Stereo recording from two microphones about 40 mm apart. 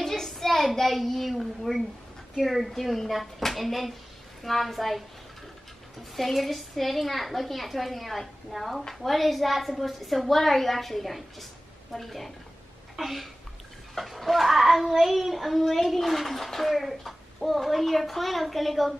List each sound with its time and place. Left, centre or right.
0.0 s a sound: centre
2.3 s a child's voice: centre
6.1 s a child's voice: centre